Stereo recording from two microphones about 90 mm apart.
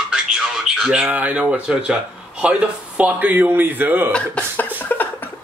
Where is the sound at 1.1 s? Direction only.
15° right (ahead or behind).